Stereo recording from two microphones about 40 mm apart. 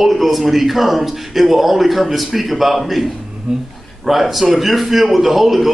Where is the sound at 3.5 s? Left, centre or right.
Right.